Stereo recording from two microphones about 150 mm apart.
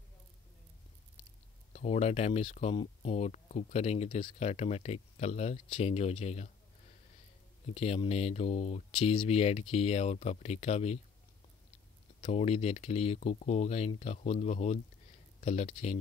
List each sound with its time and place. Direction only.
1.7 s speech: 50° left (ahead or behind)
7.6 s speech: 45° left (ahead or behind)
12.2 s speech: 45° left (ahead or behind)